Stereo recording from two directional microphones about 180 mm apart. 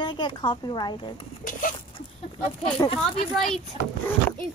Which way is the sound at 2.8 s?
20° left (ahead or behind).